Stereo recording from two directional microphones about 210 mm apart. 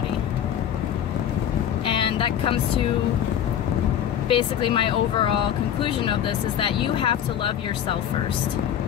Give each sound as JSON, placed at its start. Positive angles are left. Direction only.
{"t": 1.9, "sound": "vehicle", "side_deg": 25}
{"t": 4.3, "sound": "speech", "side_deg": 25}
{"t": 6.6, "sound": "speech", "side_deg": 25}